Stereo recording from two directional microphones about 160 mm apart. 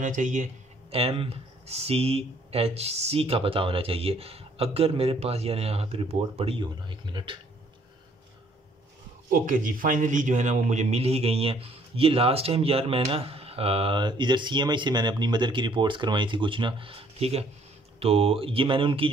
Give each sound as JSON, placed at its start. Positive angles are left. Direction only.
{"t": 0.0, "sound": "speech", "side_deg": -55}
{"t": 0.9, "sound": "speech", "side_deg": -35}
{"t": 9.5, "sound": "speech", "side_deg": -55}